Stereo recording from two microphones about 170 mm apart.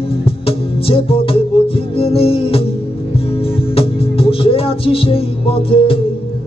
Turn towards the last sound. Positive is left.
turn(degrees=35)  # may be behind; listen again after turning